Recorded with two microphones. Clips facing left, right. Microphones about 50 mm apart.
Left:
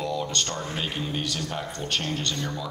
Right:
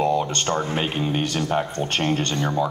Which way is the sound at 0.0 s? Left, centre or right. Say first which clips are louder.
Right 7 dB; right.